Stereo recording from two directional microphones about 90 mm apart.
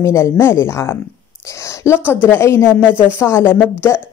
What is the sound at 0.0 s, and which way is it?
Speech, 30° left (ahead or behind).